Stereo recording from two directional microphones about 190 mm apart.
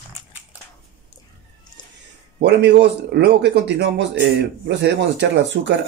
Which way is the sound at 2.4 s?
60° right (ahead or behind).